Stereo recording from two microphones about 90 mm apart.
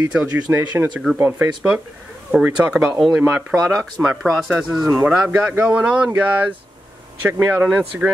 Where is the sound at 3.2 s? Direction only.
25° right (ahead or behind).